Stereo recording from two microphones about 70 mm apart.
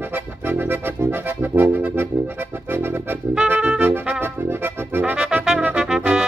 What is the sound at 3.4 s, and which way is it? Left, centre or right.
Brass instrument, centre.